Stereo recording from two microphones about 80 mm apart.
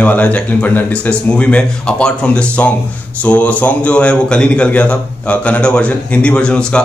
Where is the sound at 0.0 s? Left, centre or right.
Centre.